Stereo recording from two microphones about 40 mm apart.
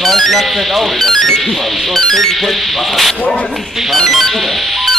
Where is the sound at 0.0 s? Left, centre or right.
Centre.